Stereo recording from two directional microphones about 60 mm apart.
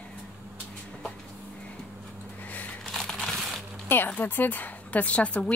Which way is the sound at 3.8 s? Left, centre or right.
Left.